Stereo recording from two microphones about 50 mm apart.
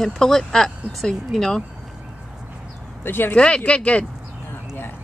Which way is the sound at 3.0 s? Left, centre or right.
Left.